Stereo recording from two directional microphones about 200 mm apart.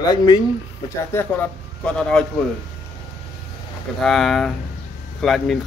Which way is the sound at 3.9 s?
Centre (ahead or behind).